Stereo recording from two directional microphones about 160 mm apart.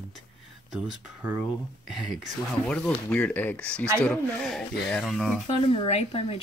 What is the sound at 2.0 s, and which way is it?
Speech, 5° right (ahead or behind).